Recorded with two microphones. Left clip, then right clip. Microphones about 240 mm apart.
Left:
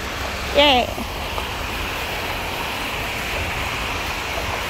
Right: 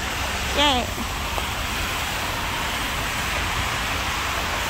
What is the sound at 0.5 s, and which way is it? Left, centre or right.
Speech, centre.